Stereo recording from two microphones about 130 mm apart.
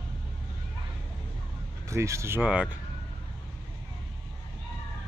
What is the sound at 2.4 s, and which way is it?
Speech, 10° right (ahead or behind).